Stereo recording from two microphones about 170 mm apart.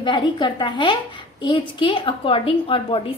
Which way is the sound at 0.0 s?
25° left (ahead or behind).